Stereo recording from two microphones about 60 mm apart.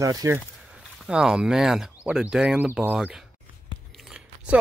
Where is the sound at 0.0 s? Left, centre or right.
Right.